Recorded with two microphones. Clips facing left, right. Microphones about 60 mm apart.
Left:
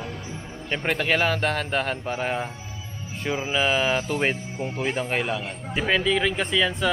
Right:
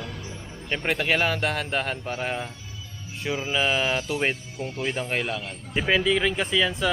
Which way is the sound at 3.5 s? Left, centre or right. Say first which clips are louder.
Left 2 dB; centre.